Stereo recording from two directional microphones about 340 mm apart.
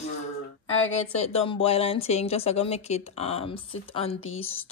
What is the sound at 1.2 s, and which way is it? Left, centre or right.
Speech, centre.